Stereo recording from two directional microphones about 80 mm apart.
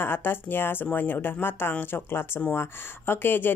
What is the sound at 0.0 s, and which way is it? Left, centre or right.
Speech, left.